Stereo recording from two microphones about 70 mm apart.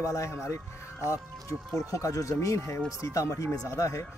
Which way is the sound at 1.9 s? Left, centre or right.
Left.